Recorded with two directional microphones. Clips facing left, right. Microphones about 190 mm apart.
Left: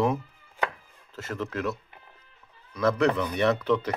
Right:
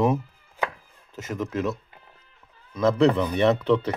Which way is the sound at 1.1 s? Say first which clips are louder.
Right 3 dB; 15° right (ahead or behind).